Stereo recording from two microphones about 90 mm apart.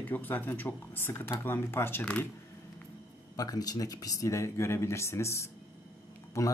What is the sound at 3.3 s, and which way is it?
Speech, 45° left (ahead or behind).